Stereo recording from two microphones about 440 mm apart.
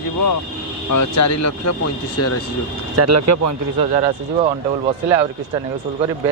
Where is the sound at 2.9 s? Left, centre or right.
Right.